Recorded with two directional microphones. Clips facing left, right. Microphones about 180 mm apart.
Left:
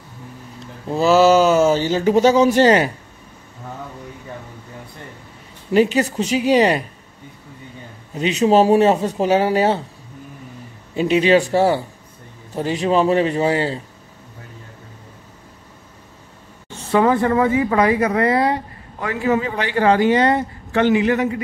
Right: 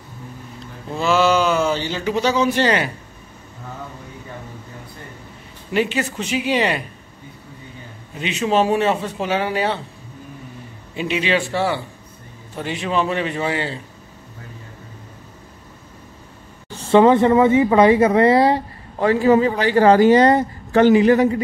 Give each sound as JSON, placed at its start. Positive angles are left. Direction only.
{"t": 0.8, "sound": "speech", "side_deg": 40}
{"t": 5.7, "sound": "speech", "side_deg": 40}
{"t": 8.1, "sound": "speech", "side_deg": 40}
{"t": 11.0, "sound": "speech", "side_deg": 40}
{"t": 16.7, "sound": "a woman's voice", "side_deg": -25}